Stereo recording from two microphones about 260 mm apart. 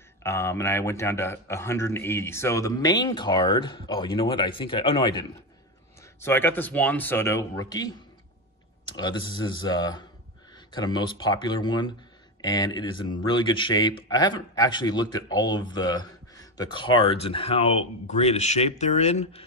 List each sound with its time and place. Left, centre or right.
0.2 s a man's voice: centre
6.2 s a man's voice: centre; by 19.4 s left